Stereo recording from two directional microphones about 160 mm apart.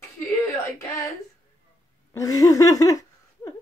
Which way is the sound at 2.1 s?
20° left (ahead or behind).